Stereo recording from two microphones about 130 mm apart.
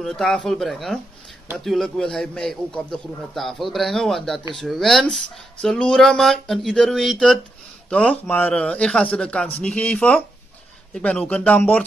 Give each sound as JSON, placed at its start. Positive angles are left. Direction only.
{"t": 0.0, "sound": "speech", "side_deg": 5}